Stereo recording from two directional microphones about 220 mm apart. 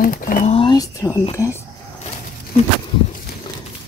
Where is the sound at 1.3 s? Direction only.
15° left (ahead or behind).